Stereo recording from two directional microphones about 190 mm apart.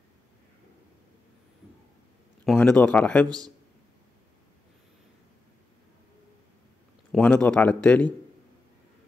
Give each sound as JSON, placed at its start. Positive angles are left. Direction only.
{"t": 2.4, "sound": "speech", "side_deg": 5}
{"t": 3.3, "sound": "a man's voice", "side_deg": -20}
{"t": 7.1, "sound": "speech", "side_deg": 5}